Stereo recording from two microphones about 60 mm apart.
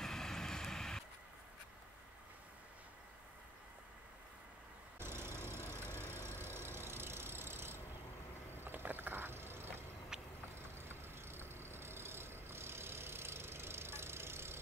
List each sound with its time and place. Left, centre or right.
0.0 s vehicle: centre
4.9 s vehicle: right